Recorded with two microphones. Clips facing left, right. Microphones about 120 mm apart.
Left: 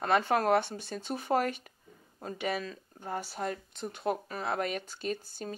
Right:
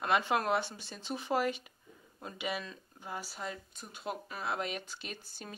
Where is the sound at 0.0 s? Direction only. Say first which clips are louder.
Left 4 dB; 45° left (ahead or behind).